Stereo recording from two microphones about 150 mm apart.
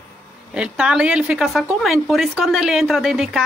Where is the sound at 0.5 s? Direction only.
5° right (ahead or behind).